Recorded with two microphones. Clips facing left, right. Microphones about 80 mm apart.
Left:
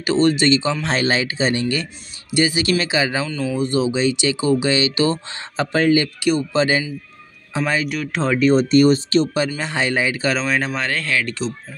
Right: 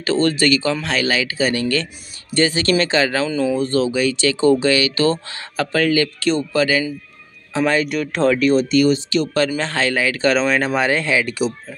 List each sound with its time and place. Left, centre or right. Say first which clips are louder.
0.0 s speech: left 1 dB; centre
3.3 s speech: right 5 dB; centre
3.5 s speech: right 1 dB; centre
7.5 s speech: right 3 dB; centre
8.4 s speech: left 1 dB; left
9.6 s speech: right 1 dB; centre
10.2 s speech: right 4 dB; centre
10.7 s speech: right 5 dB; centre